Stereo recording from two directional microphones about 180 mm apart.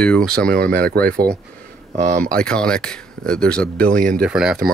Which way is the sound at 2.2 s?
5° left (ahead or behind).